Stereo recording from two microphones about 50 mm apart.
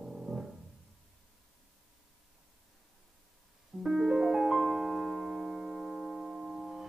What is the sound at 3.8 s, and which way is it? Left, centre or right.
Piano, centre.